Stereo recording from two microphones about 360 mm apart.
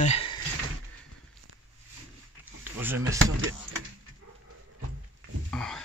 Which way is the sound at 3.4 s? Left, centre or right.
Right.